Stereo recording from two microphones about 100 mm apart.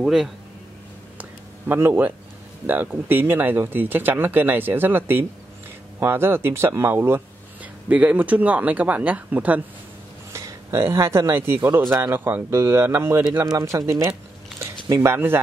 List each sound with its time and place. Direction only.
0.0 s a man's voice: 5° right (ahead or behind)
1.7 s speech: 25° right (ahead or behind)
10.3 s speech: 30° right (ahead or behind)
13.5 s speech: 35° right (ahead or behind)